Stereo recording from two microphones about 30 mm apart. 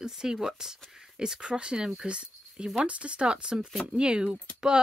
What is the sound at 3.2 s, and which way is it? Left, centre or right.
Speech, right.